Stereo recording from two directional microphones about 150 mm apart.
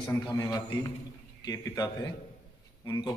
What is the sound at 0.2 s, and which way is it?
A man's voice, 25° left (ahead or behind).